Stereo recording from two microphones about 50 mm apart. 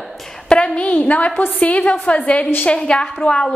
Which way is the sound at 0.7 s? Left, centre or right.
Left.